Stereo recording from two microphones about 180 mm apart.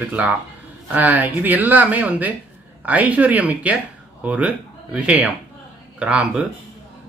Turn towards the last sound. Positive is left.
turn(degrees=-5)  # may be behind; listen again after turning